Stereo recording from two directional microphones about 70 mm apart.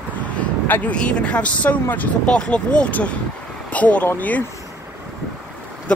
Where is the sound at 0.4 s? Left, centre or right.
Left.